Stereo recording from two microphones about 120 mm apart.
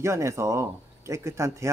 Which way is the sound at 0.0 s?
25° right (ahead or behind).